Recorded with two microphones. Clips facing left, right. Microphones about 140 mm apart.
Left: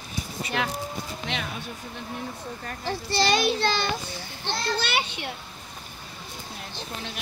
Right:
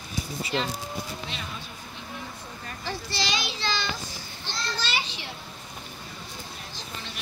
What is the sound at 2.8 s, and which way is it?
A child's voice, 55° left (ahead or behind).